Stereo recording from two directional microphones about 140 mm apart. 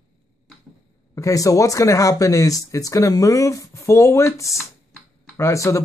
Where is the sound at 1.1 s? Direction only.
25° left (ahead or behind).